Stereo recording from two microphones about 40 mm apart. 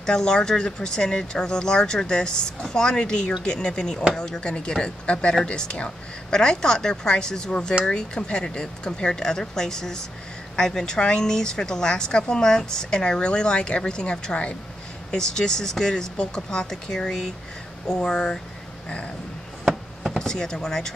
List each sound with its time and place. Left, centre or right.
0.0 s speech: centre
17.8 s speech: left
20.2 s speech: centre